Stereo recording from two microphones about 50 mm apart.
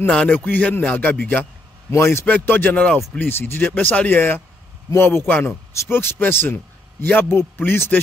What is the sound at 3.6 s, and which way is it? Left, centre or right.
Speech, left.